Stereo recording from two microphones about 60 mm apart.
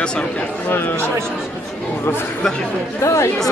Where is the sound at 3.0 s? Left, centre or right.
Left.